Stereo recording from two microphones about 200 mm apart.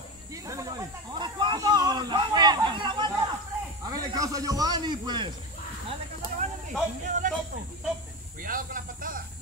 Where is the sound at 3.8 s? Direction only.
15° right (ahead or behind).